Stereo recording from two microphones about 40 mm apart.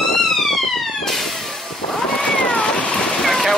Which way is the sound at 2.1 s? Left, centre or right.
Left.